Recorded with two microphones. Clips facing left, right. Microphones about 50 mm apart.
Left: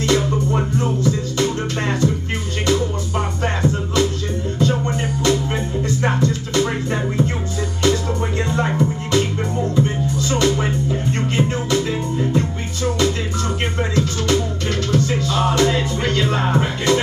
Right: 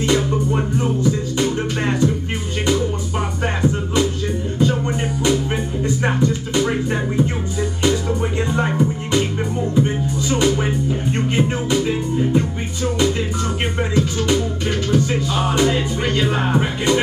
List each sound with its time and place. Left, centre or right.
0.2 s music: centre